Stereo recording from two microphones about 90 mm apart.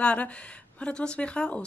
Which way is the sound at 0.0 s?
15° left (ahead or behind).